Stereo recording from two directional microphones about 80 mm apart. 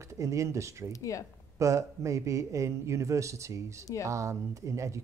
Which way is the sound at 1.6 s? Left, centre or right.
Right.